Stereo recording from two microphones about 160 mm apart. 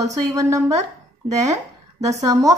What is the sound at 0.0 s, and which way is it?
Speech, 20° right (ahead or behind).